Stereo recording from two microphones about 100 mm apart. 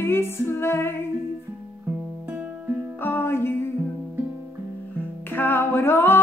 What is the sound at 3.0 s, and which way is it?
Music, 20° left (ahead or behind).